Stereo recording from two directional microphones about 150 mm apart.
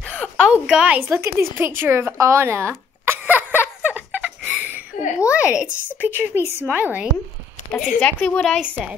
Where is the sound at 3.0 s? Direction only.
15° right (ahead or behind).